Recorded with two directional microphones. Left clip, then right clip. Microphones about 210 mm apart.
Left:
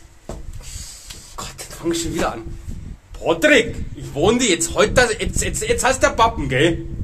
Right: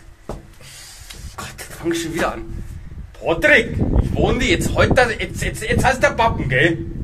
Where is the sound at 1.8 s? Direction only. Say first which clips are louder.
Right 1 dB; 10° left (ahead or behind).